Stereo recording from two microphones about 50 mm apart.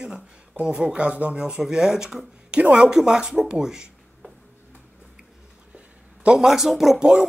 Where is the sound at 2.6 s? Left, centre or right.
Right.